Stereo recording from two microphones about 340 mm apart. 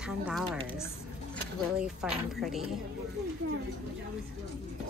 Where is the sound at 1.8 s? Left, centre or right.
Centre.